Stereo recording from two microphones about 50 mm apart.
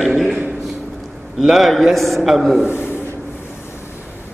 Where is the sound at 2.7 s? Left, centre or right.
Left.